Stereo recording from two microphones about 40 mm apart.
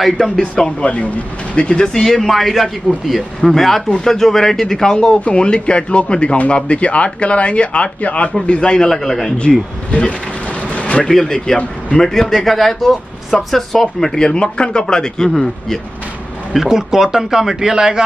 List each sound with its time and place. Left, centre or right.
0.2 s speech: centre
0.7 s speech: left
2.0 s speech: centre
5.2 s speech: left
8.5 s speech: left
9.4 s speech: left
10.7 s a sound: left
11.1 s speech: centre
12.1 s speech: centre
15.3 s speech: centre
16.6 s speech: centre